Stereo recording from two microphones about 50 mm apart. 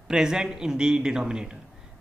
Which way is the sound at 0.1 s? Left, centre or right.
Centre.